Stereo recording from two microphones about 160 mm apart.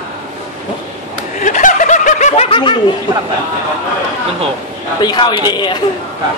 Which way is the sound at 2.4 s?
35° left (ahead or behind).